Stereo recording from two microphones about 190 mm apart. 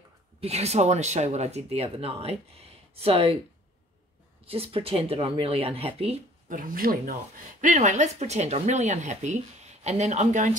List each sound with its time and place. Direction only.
0.4 s speech: 35° right (ahead or behind)
4.5 s speech: 30° right (ahead or behind)
6.6 s speech: 50° right (ahead or behind)